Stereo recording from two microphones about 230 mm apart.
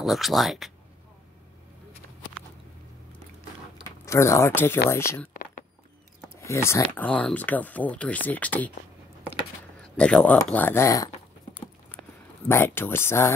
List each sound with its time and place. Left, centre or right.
0.0 s speech: centre
4.0 s speech: centre
5.3 s walk: left
6.3 s speech: centre
11.9 s a sound: centre